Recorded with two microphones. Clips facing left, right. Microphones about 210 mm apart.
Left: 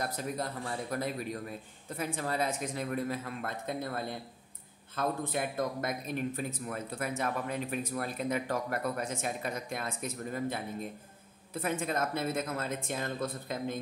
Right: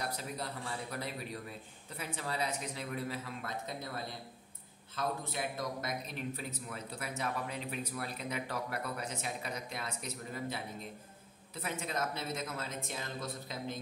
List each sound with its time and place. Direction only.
0.0 s a man's voice: 50° left (ahead or behind)